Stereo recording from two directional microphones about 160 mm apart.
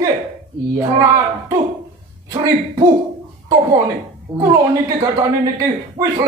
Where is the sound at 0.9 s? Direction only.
20° right (ahead or behind).